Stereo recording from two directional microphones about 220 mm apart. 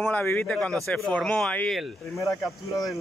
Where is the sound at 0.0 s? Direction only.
5° left (ahead or behind).